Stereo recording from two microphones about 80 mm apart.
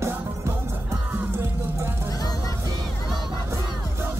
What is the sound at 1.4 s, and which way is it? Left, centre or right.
Music, right.